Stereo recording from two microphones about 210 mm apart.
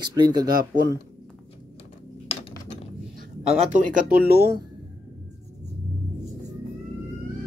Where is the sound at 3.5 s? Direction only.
35° right (ahead or behind).